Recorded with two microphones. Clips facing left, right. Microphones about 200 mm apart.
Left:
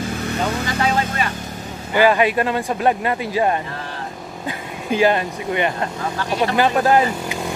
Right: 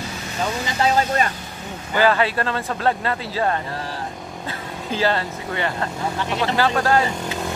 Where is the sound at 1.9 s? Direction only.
15° left (ahead or behind).